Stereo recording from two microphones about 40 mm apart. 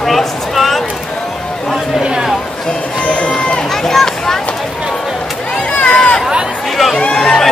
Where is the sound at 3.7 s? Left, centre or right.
Centre.